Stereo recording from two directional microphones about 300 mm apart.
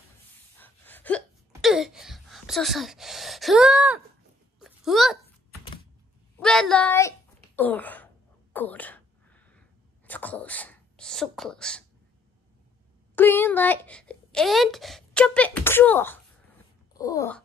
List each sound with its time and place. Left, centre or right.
0.6 s hiccup: centre
4.6 s a sound: centre
6.3 s a child's voice: centre
8.5 s sneeze: centre
13.1 s speech: centre